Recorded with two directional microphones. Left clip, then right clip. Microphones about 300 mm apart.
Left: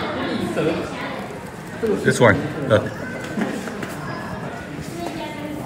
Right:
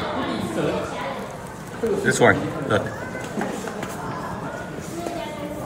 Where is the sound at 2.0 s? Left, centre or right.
Centre.